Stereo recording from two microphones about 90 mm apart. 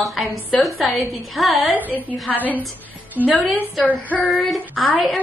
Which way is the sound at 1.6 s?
20° right (ahead or behind).